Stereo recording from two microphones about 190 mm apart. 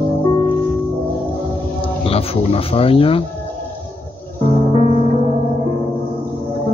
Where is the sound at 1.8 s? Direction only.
30° left (ahead or behind).